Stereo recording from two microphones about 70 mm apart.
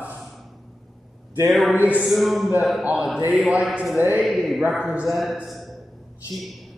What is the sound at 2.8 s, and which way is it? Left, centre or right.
Speech, centre.